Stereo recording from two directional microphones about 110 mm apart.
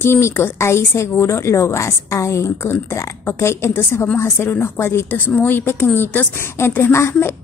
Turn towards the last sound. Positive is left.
turn(degrees=25)  # may be behind; listen again after turning